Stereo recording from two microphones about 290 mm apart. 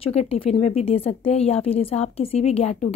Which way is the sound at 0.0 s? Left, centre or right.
Left.